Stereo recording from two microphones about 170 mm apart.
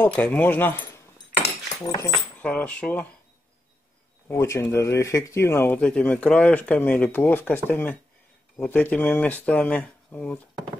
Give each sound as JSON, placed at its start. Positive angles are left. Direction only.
{"t": 0.0, "sound": "speech", "side_deg": 10}
{"t": 2.3, "sound": "speech", "side_deg": 10}
{"t": 4.3, "sound": "speech", "side_deg": 15}